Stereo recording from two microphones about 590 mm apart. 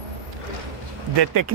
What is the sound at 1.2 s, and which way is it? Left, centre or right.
Speech, right.